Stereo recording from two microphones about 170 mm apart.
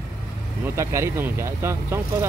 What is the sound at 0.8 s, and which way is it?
Speech, 15° right (ahead or behind).